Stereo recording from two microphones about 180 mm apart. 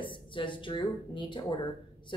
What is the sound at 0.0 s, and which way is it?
Speech, 25° left (ahead or behind).